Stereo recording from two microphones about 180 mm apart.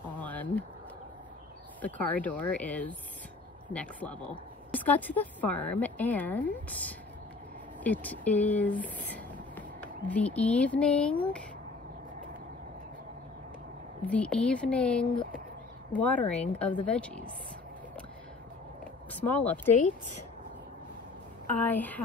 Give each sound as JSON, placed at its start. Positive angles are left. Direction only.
{"t": 0.2, "sound": "a sound", "side_deg": 10}
{"t": 1.8, "sound": "a woman's voice", "side_deg": 10}
{"t": 14.0, "sound": "a woman's voice", "side_deg": 5}
{"t": 19.1, "sound": "a woman's voice", "side_deg": 10}
{"t": 21.5, "sound": "a woman's voice", "side_deg": 10}